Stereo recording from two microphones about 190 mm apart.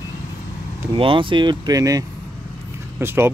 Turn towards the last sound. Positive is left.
turn(degrees=-10)  # may be behind; listen again after turning